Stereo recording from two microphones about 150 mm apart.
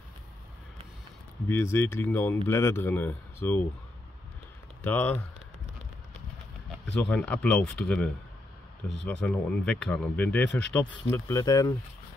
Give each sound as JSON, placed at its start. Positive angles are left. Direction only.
{"t": 1.5, "sound": "speech", "side_deg": 15}
{"t": 4.8, "sound": "speech", "side_deg": 10}
{"t": 6.9, "sound": "speech", "side_deg": 5}